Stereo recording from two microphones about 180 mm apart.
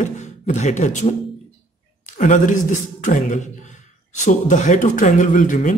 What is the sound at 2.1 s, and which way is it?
A man's voice, 45° left (ahead or behind).